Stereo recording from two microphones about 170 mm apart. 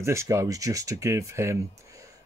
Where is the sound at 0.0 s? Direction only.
15° right (ahead or behind).